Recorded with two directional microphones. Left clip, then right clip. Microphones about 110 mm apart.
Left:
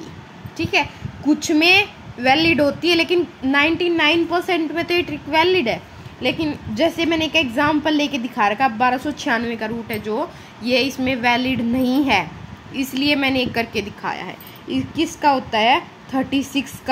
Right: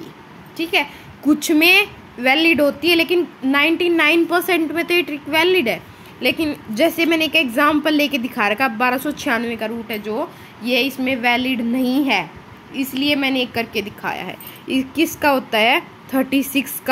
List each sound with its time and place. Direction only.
0.6 s a woman's voice: 25° right (ahead or behind)
1.2 s a woman's voice: 50° right (ahead or behind)
1.5 s a woman's voice: 30° right (ahead or behind)
4.0 s a woman's voice: 50° right (ahead or behind)
4.7 s a woman's voice: 30° right (ahead or behind)
6.2 s a woman's voice: 30° right (ahead or behind); by 13.8 s 5° right (ahead or behind)
14.0 s speech: 40° right (ahead or behind)
14.7 s a woman's voice: 55° right (ahead or behind)